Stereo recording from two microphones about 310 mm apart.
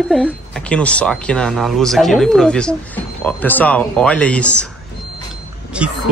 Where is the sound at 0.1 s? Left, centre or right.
Centre.